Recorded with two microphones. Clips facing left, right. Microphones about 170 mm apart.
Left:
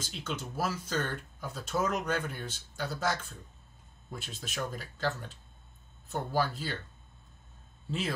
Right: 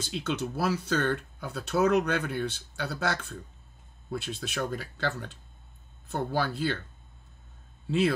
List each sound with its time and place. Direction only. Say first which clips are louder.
0.1 s speech: right 8 dB; 70° right (ahead or behind)